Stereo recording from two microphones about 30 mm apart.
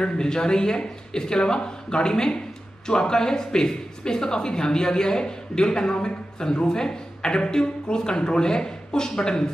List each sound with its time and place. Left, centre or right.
0.0 s a man's voice: left